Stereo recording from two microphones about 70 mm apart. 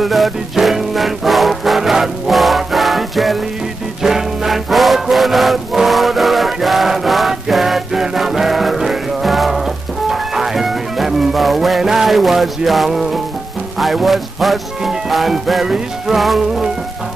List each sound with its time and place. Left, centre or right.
0.0 s music: centre